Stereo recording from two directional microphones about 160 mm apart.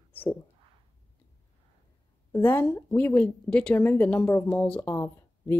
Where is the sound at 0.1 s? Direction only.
10° left (ahead or behind).